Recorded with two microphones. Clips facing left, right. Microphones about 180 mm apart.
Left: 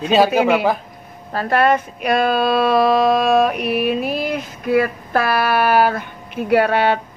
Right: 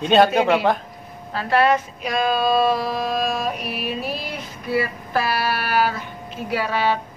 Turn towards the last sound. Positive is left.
turn(degrees=60)  # may be behind; listen again after turning